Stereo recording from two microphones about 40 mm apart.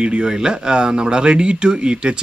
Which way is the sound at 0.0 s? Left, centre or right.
Right.